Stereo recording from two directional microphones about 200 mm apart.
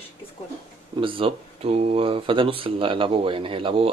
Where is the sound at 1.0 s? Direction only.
25° right (ahead or behind).